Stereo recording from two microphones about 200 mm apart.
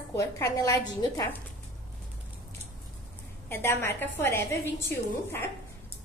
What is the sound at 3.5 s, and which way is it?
A woman's voice, 10° left (ahead or behind).